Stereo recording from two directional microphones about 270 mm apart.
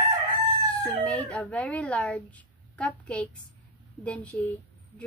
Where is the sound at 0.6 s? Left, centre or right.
Centre.